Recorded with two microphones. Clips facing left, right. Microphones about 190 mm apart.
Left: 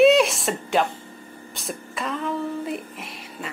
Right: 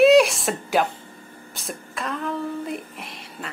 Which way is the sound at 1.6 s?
Centre (ahead or behind).